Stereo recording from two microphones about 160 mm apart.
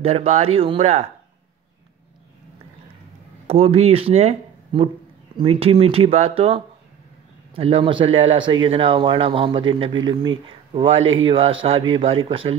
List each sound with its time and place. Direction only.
0.0 s speech: 40° right (ahead or behind)
3.4 s speech: 40° right (ahead or behind)